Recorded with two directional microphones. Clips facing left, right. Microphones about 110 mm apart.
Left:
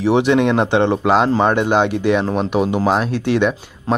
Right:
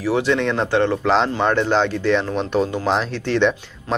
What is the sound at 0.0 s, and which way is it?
Speech, 20° left (ahead or behind).